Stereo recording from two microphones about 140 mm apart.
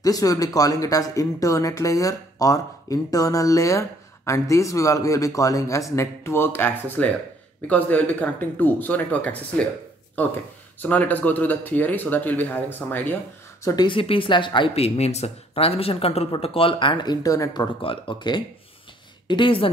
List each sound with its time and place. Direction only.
0.0 s speech: 25° left (ahead or behind); by 9.7 s 10° left (ahead or behind)
10.8 s speech: 10° left (ahead or behind)
13.7 s speech: 30° left (ahead or behind)
17.8 s speech: 35° left (ahead or behind)